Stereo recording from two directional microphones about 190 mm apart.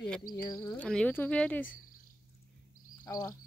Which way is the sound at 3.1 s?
15° left (ahead or behind).